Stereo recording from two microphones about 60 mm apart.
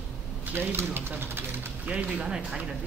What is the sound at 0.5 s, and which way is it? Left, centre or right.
Speech, right.